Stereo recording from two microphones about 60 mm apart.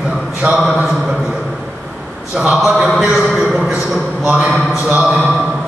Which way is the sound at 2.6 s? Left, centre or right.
Centre.